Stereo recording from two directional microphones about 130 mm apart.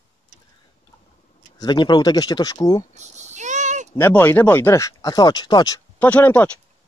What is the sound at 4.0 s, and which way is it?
Speech, 15° left (ahead or behind).